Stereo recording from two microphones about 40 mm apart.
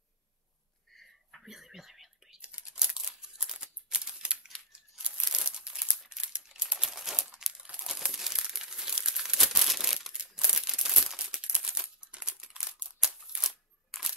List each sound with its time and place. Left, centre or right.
0.9 s a sound: centre
1.4 s whispering: centre
2.4 s crumpling: right
6.8 s crumpling: centre
9.9 s crumpling: centre
13.4 s a sound: centre